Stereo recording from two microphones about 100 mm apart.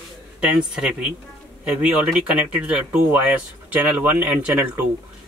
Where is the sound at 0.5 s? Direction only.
5° right (ahead or behind).